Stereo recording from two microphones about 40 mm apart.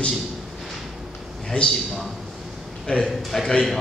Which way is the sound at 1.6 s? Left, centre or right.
Left.